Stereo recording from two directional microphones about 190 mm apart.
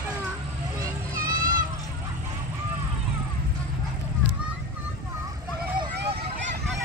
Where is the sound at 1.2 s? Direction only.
45° right (ahead or behind).